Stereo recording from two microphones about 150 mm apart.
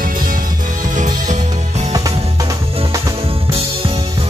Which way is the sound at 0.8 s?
55° right (ahead or behind).